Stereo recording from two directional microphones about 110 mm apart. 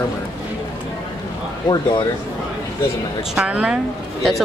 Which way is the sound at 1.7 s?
35° left (ahead or behind).